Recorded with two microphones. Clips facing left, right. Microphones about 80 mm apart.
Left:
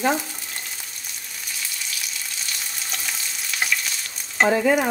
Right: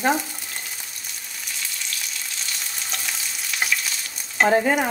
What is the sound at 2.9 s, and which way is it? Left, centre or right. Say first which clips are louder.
Frying: even; centre.